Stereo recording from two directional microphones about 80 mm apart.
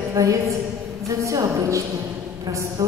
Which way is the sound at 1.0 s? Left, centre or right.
Right.